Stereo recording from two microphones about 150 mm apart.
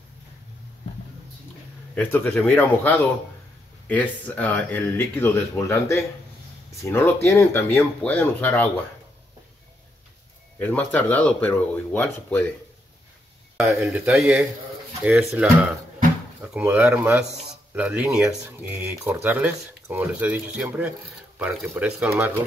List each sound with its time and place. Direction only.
2.0 s speech: 15° left (ahead or behind)
10.6 s speech: 10° left (ahead or behind)
13.7 s speech: 10° right (ahead or behind)